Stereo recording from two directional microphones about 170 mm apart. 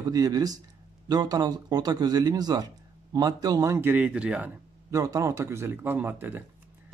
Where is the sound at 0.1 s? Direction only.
20° right (ahead or behind); by 4.5 s 5° right (ahead or behind).